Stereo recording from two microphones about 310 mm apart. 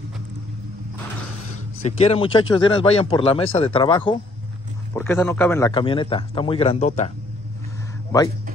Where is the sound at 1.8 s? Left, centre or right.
Centre.